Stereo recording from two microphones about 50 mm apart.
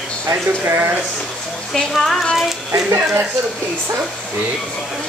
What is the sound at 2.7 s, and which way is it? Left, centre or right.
Speech, right.